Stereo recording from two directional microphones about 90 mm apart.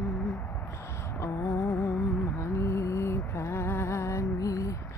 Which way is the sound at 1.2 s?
35° left (ahead or behind).